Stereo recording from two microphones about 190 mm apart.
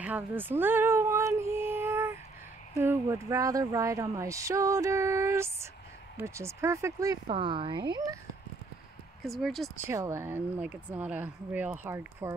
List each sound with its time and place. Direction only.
0.0 s speech: 10° right (ahead or behind)
9.2 s speech: centre (ahead or behind)
9.8 s speech: 15° right (ahead or behind)